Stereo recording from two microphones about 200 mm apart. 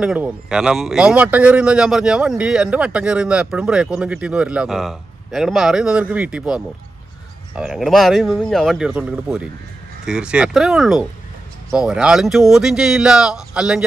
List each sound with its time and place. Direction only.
0.0 s a man's voice: 5° right (ahead or behind)